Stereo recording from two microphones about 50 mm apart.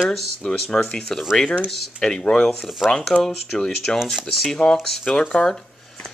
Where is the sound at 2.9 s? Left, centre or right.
Centre.